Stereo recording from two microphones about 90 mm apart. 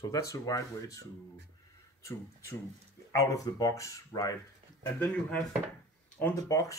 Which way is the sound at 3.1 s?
40° left (ahead or behind).